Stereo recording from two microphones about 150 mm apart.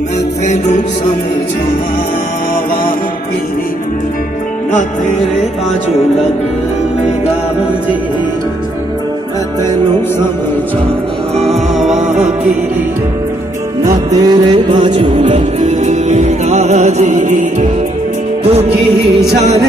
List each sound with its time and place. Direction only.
0.5 s music: 50° left (ahead or behind)
11.4 s music: centre (ahead or behind)
13.8 s music: 25° right (ahead or behind)
15.6 s music: 50° right (ahead or behind)